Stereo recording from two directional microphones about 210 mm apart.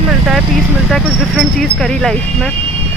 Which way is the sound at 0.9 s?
Centre (ahead or behind).